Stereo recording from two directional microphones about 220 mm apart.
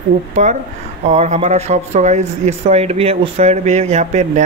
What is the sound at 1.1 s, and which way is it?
Speech, 30° right (ahead or behind).